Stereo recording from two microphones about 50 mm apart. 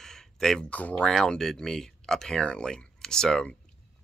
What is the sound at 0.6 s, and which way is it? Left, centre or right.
Speech, left.